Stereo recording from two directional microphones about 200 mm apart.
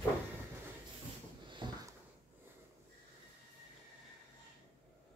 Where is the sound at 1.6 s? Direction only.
25° right (ahead or behind).